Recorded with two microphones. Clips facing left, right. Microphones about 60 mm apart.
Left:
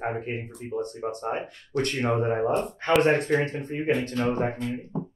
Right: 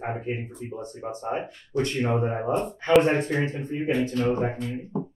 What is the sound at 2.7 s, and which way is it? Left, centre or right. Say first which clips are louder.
A man's voice: right 4 dB; left.